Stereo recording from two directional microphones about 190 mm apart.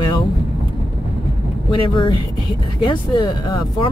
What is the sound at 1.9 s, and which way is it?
Speech, 25° left (ahead or behind).